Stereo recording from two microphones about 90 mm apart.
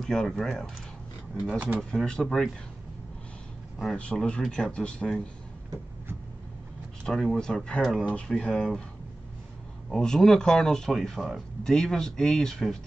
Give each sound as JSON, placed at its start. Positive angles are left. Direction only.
{"t": 0.0, "sound": "speech", "side_deg": 5}
{"t": 1.5, "sound": "speech", "side_deg": -20}
{"t": 1.8, "sound": "speech", "side_deg": 5}
{"t": 3.8, "sound": "speech", "side_deg": 10}
{"t": 7.1, "sound": "speech", "side_deg": 5}
{"t": 9.8, "sound": "speech", "side_deg": 5}